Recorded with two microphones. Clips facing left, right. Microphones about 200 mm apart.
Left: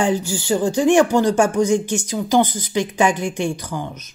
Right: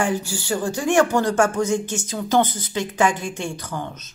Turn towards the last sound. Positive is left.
turn(degrees=10)  # may be behind; listen again after turning